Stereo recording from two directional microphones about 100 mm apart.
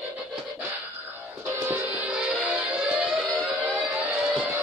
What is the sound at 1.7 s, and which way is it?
Music, 15° right (ahead or behind).